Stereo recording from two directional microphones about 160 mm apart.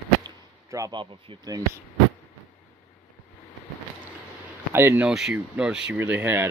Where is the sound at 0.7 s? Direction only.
25° right (ahead or behind).